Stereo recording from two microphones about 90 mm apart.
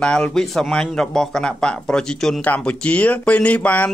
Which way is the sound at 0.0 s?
10° left (ahead or behind).